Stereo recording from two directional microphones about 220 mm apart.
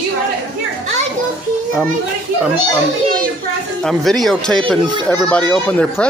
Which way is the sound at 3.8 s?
Centre (ahead or behind).